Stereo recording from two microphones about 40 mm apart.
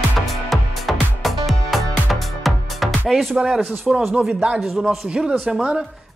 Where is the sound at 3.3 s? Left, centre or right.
Right.